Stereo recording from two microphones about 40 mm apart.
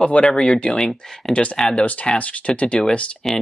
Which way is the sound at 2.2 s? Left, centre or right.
Left.